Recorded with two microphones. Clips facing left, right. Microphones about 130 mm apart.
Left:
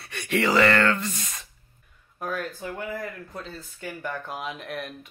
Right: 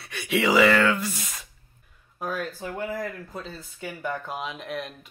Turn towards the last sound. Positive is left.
turn(degrees=0)  # may be behind; listen again after turning